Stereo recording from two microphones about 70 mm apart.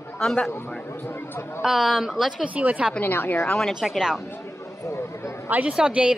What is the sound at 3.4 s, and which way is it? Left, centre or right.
Speech, centre.